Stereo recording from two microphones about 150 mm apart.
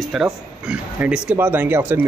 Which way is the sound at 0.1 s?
5° right (ahead or behind).